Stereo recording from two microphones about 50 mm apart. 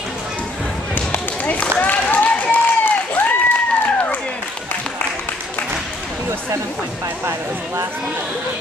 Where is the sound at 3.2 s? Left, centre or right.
Left.